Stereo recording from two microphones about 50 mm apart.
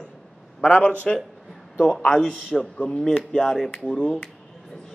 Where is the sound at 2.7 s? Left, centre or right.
Left.